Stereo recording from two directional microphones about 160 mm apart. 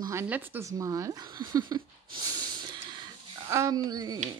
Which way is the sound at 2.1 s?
25° right (ahead or behind).